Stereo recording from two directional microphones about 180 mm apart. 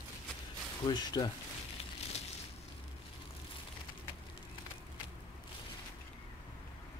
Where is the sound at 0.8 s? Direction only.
25° left (ahead or behind).